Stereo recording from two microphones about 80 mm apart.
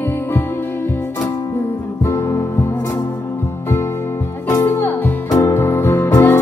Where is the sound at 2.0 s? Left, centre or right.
Left.